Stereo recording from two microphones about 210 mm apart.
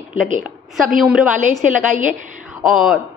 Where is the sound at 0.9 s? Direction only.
Centre (ahead or behind).